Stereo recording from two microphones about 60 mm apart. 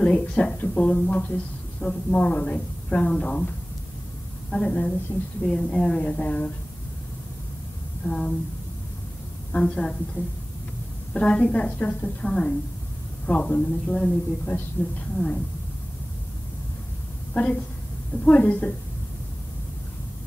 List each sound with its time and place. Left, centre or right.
0.0 s a woman's voice: centre
5.4 s a woman's voice: centre
6.0 s a woman's voice: left
8.0 s a woman's voice: centre
9.5 s a woman's voice: centre
11.1 s a woman's voice: centre
17.3 s a woman's voice: left